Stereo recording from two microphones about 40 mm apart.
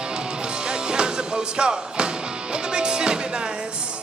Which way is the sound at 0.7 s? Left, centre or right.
Right.